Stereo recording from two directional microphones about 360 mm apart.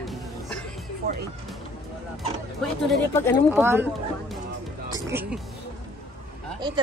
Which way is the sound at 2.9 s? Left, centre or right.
Centre.